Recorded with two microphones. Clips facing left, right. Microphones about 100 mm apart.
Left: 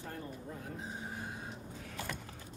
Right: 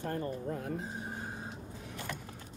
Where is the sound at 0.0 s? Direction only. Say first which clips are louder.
Right 8 dB; 65° right (ahead or behind).